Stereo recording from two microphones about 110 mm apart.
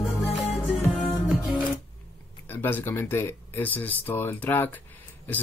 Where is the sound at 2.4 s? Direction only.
20° left (ahead or behind).